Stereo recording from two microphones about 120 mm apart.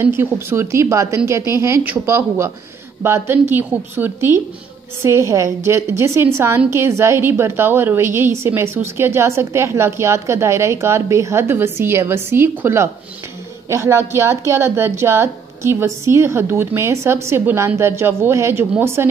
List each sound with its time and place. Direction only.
0.0 s a woman's voice: 20° right (ahead or behind)